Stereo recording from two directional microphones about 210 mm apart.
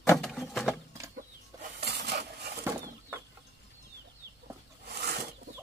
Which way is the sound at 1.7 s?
50° right (ahead or behind).